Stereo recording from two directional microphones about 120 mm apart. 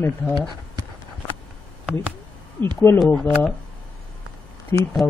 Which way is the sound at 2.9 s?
20° left (ahead or behind).